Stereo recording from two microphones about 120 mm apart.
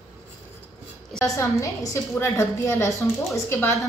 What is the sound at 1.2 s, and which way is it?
A woman's voice, 25° left (ahead or behind).